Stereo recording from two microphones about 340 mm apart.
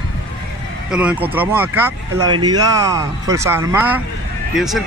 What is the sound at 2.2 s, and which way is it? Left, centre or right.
Speech, right.